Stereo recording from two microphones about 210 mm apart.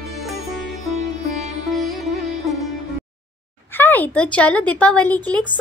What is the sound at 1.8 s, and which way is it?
Music, centre (ahead or behind).